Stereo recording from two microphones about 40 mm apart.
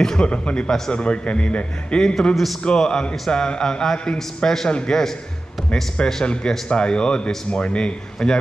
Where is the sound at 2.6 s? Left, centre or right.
Left.